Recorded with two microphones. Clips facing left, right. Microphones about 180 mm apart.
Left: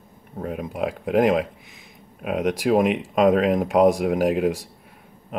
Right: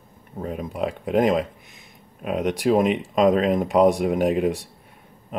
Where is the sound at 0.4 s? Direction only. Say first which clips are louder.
Even; centre (ahead or behind).